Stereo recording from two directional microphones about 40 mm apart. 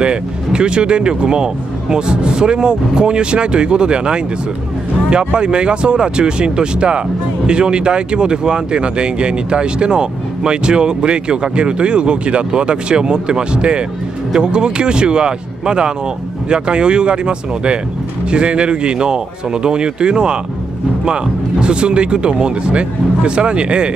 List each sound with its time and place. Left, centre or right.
0.0 s speech: right